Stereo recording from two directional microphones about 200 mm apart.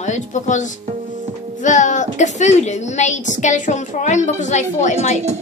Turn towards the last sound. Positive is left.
turn(degrees=35)  # may be behind; listen again after turning